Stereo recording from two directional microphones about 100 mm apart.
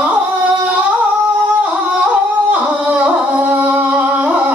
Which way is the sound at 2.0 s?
15° right (ahead or behind).